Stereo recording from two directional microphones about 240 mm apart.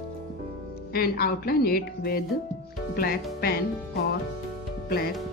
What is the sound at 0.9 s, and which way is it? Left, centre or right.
A woman's voice, left.